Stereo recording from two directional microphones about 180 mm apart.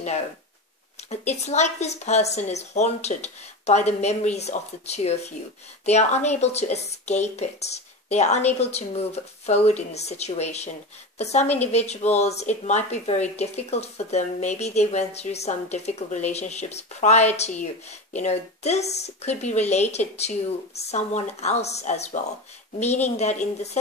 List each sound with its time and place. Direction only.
1.2 s speech: 40° left (ahead or behind)